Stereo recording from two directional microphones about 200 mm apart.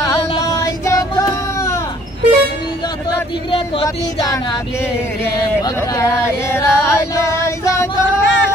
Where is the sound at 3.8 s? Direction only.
20° left (ahead or behind).